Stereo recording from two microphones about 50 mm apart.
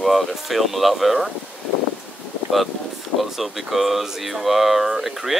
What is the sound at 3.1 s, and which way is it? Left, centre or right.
Speech, centre.